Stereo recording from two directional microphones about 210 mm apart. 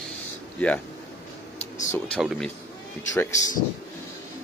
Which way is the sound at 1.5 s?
35° left (ahead or behind).